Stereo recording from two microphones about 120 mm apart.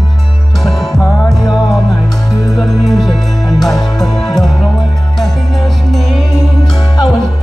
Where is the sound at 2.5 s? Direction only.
Centre (ahead or behind).